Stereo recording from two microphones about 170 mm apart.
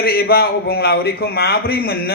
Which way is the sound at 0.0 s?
65° left (ahead or behind).